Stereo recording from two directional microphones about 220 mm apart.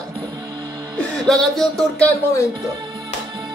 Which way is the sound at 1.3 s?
Centre (ahead or behind).